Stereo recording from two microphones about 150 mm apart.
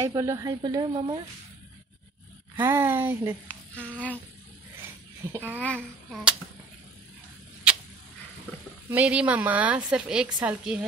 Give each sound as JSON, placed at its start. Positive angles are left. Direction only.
{"t": 0.0, "sound": "a woman's voice", "side_deg": -20}
{"t": 2.5, "sound": "speech", "side_deg": -15}
{"t": 3.4, "sound": "a sound", "side_deg": 10}
{"t": 5.3, "sound": "speech", "side_deg": -15}
{"t": 5.6, "sound": "speech", "side_deg": 10}
{"t": 8.9, "sound": "speech", "side_deg": -10}